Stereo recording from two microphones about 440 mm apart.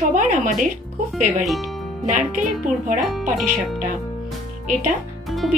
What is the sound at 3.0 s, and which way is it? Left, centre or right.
Speech, centre.